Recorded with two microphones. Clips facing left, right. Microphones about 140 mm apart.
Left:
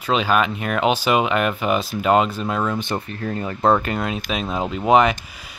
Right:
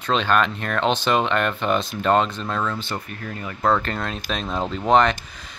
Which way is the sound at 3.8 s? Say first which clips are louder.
Left 3 dB; 10° left (ahead or behind).